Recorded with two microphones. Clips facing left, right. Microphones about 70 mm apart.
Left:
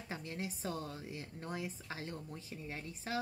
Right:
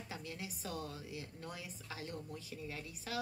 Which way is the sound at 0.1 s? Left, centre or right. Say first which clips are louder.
Left 5 dB; left.